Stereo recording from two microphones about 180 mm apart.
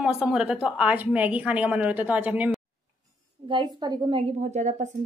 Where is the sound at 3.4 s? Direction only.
25° right (ahead or behind); by 4.9 s 40° right (ahead or behind).